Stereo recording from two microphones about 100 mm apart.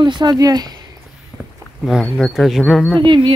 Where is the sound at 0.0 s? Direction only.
50° right (ahead or behind).